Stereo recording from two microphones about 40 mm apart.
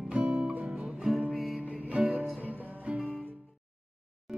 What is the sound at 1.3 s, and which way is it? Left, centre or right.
Music, centre.